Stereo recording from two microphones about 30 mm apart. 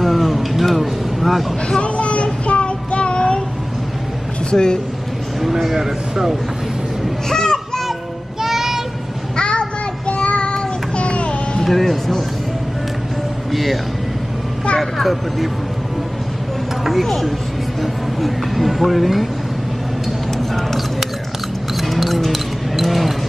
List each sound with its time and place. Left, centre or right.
0.0 s vehicle: centre
0.7 s a sound: centre
1.8 s a sound: left
2.4 s child singing: left
4.5 s speech: left
5.4 s a man's voice: centre
7.2 s a sound: left
8.4 s child singing: centre
9.4 s child singing: left
11.6 s speech: centre
13.5 s speech: centre
14.8 s speech: centre
17.0 s a woman's voice: centre
21.7 s a sound: centre